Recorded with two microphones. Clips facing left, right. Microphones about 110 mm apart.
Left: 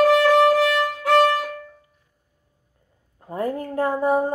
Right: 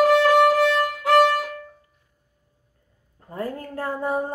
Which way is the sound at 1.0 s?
10° right (ahead or behind).